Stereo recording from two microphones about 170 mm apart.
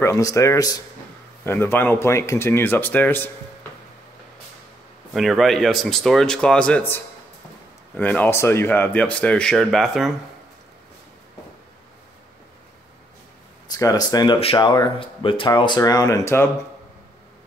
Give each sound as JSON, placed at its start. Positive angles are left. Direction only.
{"t": 0.0, "sound": "speech", "side_deg": 20}
{"t": 5.1, "sound": "speech", "side_deg": 0}
{"t": 7.9, "sound": "speech", "side_deg": 10}
{"t": 13.7, "sound": "speech", "side_deg": 20}